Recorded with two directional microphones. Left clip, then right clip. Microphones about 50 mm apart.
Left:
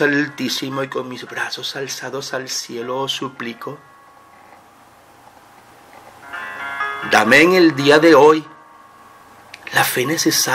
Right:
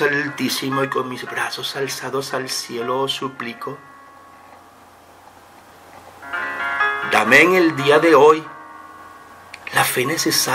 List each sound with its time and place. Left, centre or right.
0.0 s speech: left
6.3 s music: right
7.1 s music: centre
7.7 s speech: centre
9.5 s a sound: centre
10.0 s speech: centre